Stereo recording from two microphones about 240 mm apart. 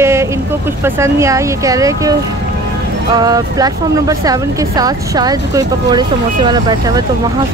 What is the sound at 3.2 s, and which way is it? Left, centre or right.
Speech, centre.